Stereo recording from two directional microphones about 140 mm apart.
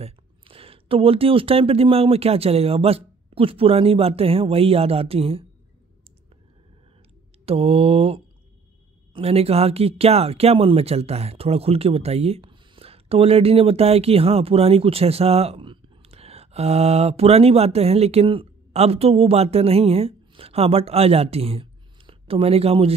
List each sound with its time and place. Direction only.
0.0 s speech: 40° right (ahead or behind)
7.4 s speech: 45° right (ahead or behind)